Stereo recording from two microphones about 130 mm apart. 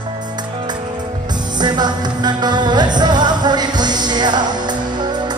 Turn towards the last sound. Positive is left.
turn(degrees=-35)  # may be behind; listen again after turning